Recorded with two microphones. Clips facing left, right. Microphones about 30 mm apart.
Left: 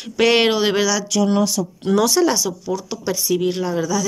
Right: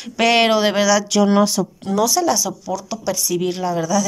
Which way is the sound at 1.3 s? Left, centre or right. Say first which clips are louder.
Right 3 dB; right.